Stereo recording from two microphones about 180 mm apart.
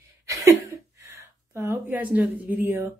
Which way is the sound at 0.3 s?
15° right (ahead or behind).